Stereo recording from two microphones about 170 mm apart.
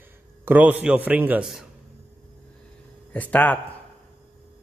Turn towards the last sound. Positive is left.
turn(degrees=10)  # may be behind; listen again after turning